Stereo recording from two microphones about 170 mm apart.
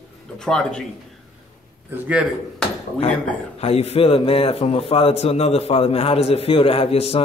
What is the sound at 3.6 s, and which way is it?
A man's voice, 35° left (ahead or behind).